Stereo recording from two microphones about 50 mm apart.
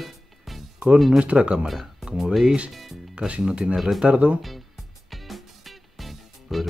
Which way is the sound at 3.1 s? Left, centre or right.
Centre.